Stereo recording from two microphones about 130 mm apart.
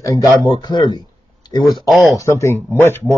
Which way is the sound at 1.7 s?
Centre (ahead or behind).